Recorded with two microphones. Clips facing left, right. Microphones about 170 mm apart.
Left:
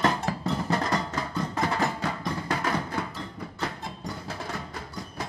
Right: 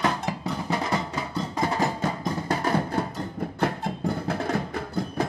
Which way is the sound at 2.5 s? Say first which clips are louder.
Right 6 dB; 40° right (ahead or behind).